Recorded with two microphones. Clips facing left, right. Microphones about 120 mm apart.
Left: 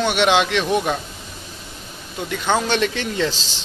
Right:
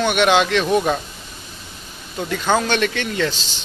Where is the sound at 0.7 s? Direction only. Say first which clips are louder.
Right 2 dB; centre (ahead or behind).